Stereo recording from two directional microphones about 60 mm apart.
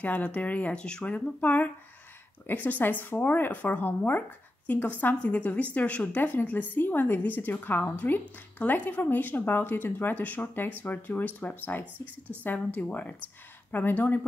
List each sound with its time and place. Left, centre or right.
0.0 s a woman's voice: left